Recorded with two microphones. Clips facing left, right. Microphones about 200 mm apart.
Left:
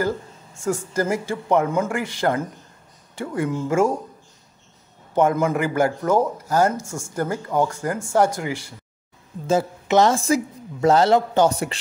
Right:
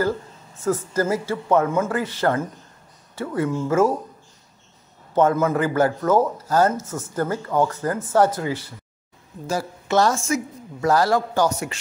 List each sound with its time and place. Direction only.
0.7 s speech: 15° left (ahead or behind)
5.1 s speech: 15° left (ahead or behind)
10.1 s a woman's voice: 35° left (ahead or behind)